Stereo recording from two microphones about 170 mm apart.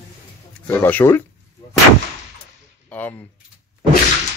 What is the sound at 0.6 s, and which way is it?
Speech, 10° left (ahead or behind).